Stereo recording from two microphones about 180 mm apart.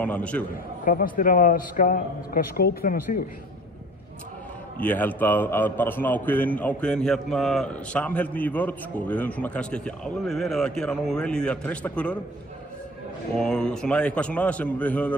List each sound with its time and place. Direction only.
0.0 s a man's voice: 5° left (ahead or behind)
0.8 s a man's voice: 50° left (ahead or behind)
4.7 s a man's voice: 10° left (ahead or behind)
13.4 s a man's voice: 5° left (ahead or behind)